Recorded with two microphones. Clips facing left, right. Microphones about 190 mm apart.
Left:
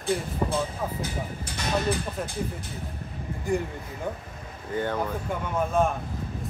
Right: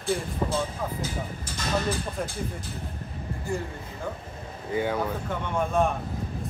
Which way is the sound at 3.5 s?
15° left (ahead or behind).